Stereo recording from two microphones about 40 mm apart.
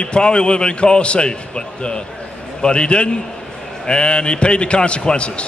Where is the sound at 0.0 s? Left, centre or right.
Left.